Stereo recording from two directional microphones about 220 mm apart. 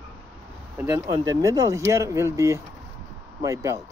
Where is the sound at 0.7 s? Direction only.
15° right (ahead or behind).